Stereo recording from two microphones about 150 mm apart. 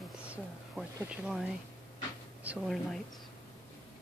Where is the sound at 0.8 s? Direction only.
Centre (ahead or behind).